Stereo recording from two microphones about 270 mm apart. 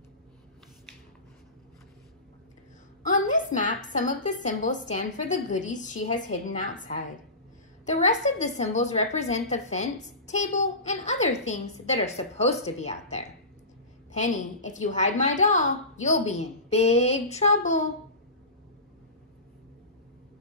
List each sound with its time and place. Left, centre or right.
3.1 s a woman's voice: left